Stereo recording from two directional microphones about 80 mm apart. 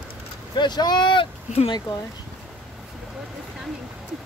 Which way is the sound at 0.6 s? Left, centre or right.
Left.